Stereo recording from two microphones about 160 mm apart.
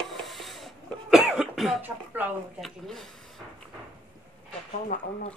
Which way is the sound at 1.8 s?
10° right (ahead or behind).